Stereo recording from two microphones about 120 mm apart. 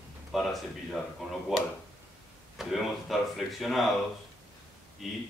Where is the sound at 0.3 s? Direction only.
Centre (ahead or behind).